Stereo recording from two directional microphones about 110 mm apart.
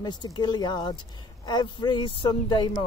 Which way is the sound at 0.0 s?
40° left (ahead or behind).